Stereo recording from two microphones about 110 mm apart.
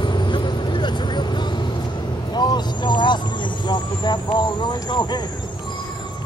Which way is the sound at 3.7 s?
45° left (ahead or behind).